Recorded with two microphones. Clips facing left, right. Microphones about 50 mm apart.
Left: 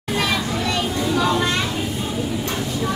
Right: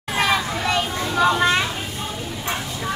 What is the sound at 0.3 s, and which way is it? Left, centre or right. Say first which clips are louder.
Children playing: right 1 dB; centre.